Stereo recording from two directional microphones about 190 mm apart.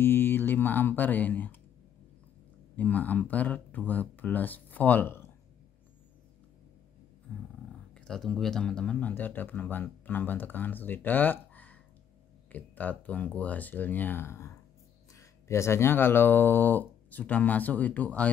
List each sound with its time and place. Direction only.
0.0 s speech: 10° left (ahead or behind)
2.7 s speech: 10° left (ahead or behind)
7.9 s speech: 5° left (ahead or behind)